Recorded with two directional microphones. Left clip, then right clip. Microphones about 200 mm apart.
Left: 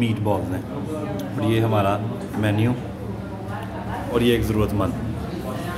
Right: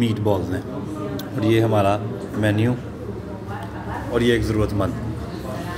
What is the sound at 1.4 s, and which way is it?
Speech, 15° right (ahead or behind).